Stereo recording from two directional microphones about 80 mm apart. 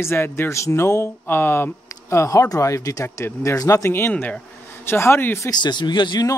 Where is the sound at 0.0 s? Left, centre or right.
Left.